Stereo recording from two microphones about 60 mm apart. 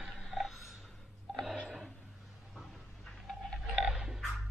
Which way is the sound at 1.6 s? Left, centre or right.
Centre.